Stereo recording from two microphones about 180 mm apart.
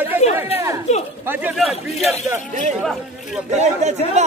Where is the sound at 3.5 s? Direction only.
40° right (ahead or behind).